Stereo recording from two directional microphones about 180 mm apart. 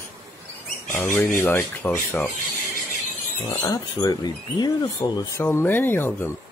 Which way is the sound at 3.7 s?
20° left (ahead or behind).